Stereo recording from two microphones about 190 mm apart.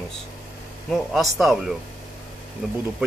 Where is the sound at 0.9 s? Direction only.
Centre (ahead or behind).